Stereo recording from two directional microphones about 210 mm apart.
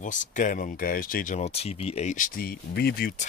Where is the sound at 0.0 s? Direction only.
35° left (ahead or behind).